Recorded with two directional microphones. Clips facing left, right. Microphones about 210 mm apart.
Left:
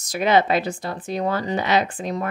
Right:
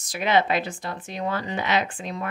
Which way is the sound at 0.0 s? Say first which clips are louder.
Left 4 dB; 40° left (ahead or behind).